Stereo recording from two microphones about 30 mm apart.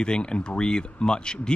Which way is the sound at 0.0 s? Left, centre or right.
Left.